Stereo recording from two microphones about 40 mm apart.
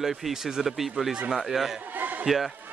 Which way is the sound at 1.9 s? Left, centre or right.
Right.